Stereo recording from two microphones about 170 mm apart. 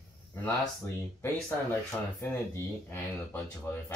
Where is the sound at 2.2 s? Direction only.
10° left (ahead or behind).